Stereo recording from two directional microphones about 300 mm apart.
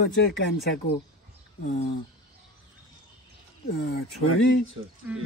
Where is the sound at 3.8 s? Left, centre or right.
Left.